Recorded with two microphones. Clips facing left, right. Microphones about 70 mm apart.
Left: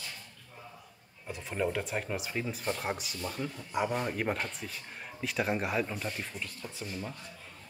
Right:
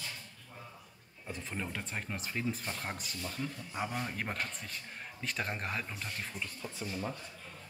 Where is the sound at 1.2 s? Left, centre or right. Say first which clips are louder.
Left 7 dB; centre.